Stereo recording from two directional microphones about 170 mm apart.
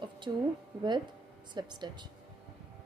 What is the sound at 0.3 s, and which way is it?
Speech, 25° right (ahead or behind).